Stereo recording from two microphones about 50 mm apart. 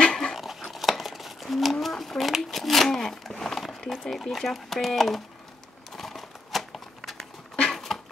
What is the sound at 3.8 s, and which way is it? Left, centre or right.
Speech, centre.